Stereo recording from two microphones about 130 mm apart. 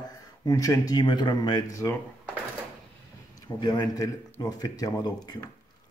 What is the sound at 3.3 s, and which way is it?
Speech, 30° left (ahead or behind).